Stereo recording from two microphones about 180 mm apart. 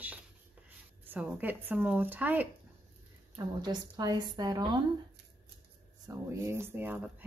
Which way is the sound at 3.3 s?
20° right (ahead or behind).